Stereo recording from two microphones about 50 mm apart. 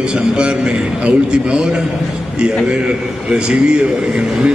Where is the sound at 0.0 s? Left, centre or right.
Centre.